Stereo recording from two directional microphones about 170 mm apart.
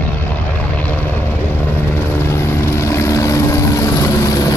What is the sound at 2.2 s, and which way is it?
Vehicle, 15° left (ahead or behind).